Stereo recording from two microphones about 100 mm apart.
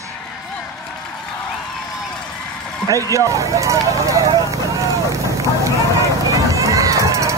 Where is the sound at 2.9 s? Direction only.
35° right (ahead or behind).